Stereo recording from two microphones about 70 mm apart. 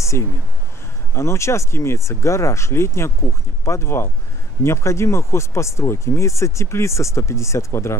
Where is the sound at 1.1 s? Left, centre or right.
Left.